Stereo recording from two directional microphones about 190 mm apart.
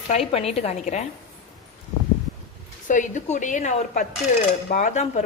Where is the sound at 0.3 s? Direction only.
30° left (ahead or behind).